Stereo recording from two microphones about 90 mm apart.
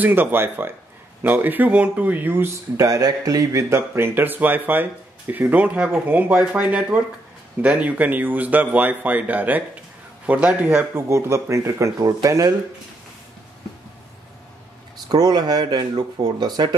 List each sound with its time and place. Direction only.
0.0 s speech: 20° right (ahead or behind); by 3.6 s 45° right (ahead or behind)
3.7 s a man's voice: 25° right (ahead or behind)
15.0 s speech: 45° right (ahead or behind)